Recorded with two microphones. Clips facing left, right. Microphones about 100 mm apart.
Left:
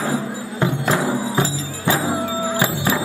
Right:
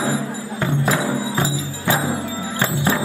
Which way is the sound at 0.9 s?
20° left (ahead or behind).